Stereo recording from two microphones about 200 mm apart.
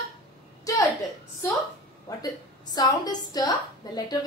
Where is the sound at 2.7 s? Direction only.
20° left (ahead or behind).